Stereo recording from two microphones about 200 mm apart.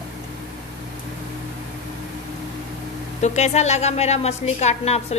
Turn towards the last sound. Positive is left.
turn(degrees=35)  # may be behind; listen again after turning